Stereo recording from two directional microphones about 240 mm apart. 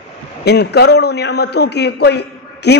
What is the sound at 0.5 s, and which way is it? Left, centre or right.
A man's voice, left.